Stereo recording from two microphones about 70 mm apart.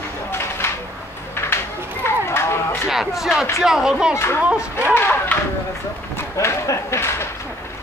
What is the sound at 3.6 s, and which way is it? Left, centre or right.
Speech, centre.